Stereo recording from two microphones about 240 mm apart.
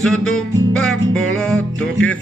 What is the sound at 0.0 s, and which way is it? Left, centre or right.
Music, centre.